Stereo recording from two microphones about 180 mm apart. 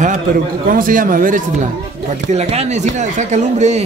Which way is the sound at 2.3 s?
35° right (ahead or behind).